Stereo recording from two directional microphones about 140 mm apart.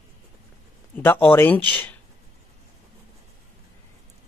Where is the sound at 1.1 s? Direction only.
15° left (ahead or behind).